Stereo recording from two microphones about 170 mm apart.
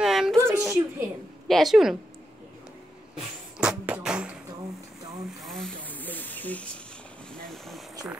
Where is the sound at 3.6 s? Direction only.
5° right (ahead or behind).